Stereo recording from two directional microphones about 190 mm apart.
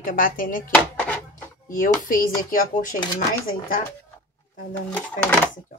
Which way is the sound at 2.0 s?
45° left (ahead or behind).